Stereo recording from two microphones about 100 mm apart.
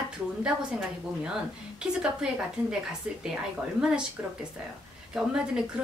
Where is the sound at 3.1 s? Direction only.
10° right (ahead or behind).